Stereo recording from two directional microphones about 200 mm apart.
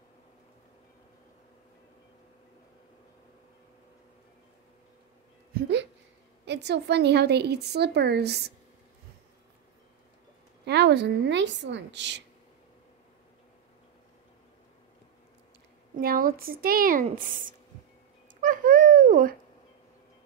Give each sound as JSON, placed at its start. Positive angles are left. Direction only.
{"t": 5.5, "sound": "a sound", "side_deg": -60}
{"t": 6.4, "sound": "a woman's voice", "side_deg": -60}
{"t": 10.6, "sound": "a woman's voice", "side_deg": -55}
{"t": 16.0, "sound": "speech", "side_deg": -45}
{"t": 18.4, "sound": "babbling", "side_deg": -40}